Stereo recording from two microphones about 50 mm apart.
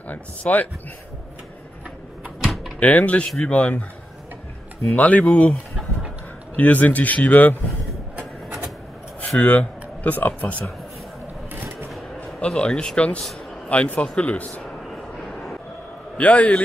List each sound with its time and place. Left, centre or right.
0.1 s speech: left
2.4 s door: centre
2.8 s speech: left
4.9 s speech: left
9.4 s speech: left
12.4 s speech: centre
13.7 s speech: left
14.6 s vehicle: centre
16.2 s speech: left